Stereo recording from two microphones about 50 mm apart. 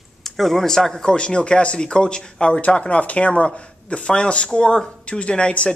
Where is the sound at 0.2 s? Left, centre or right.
Centre.